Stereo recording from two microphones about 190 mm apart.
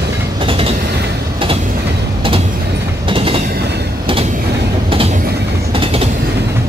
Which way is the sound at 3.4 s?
60° right (ahead or behind).